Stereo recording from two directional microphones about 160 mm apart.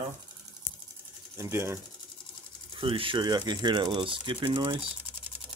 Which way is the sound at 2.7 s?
35° right (ahead or behind).